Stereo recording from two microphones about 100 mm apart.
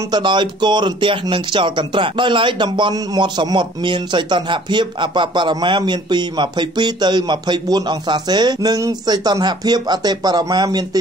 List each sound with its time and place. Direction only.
0.1 s speech: 50° right (ahead or behind)